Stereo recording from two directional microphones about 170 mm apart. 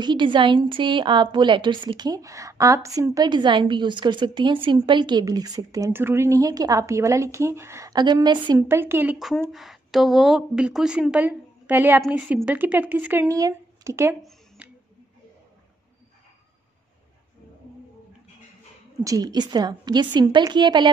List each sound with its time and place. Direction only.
0.0 s a woman's voice: 25° right (ahead or behind)
8.5 s a woman's voice: 15° right (ahead or behind)
14.6 s a sound: 5° right (ahead or behind)
19.0 s a woman's voice: 20° right (ahead or behind)